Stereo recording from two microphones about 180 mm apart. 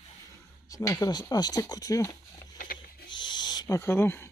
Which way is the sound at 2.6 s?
55° left (ahead or behind).